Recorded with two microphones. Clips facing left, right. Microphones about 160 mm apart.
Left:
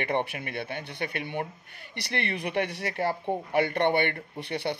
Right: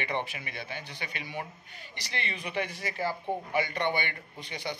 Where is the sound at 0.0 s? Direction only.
60° left (ahead or behind).